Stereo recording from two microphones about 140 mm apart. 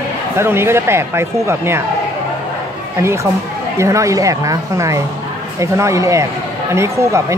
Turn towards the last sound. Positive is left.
turn(degrees=-20)  # may be behind; listen again after turning